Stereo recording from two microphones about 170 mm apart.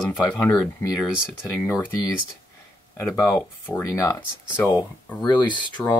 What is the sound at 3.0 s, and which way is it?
Speech, 5° left (ahead or behind).